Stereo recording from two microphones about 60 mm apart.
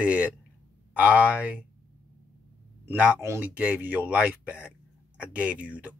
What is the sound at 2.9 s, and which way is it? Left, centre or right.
Speech, right.